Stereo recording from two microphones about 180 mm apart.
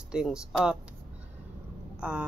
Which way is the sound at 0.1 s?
5° right (ahead or behind).